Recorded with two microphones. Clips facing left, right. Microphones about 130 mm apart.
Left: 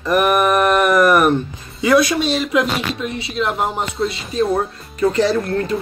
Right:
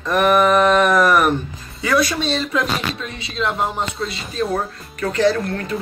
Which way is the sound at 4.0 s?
25° left (ahead or behind).